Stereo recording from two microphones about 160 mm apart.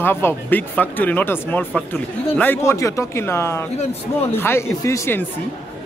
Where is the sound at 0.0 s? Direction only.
15° left (ahead or behind).